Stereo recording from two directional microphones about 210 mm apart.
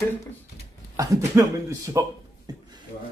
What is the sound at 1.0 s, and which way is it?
Speech, 15° right (ahead or behind).